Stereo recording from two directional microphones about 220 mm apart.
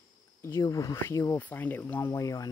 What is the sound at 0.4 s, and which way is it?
Speech, 15° left (ahead or behind).